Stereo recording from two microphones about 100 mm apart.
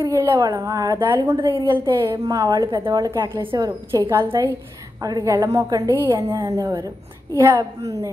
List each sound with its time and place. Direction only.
0.0 s a woman's voice: 30° right (ahead or behind)
2.2 s a woman's voice: 40° right (ahead or behind)
2.7 s a woman's voice: 50° right (ahead or behind)
3.0 s a woman's voice: 30° right (ahead or behind)